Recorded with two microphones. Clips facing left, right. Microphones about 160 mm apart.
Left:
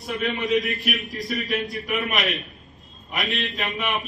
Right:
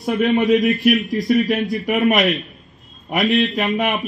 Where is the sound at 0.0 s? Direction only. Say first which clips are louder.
Right 10 dB; 75° right (ahead or behind).